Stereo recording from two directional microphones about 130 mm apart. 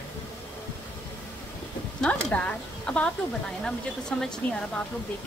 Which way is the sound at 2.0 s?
10° left (ahead or behind).